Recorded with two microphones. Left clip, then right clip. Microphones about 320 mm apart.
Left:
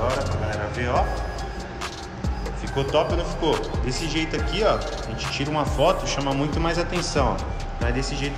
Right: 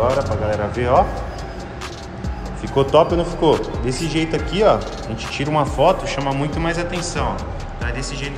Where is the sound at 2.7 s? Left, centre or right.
Centre; by 8.1 s left.